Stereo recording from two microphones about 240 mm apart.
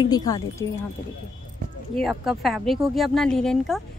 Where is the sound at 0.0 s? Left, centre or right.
Centre.